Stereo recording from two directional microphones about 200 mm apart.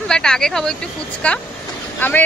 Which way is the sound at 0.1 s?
5° left (ahead or behind).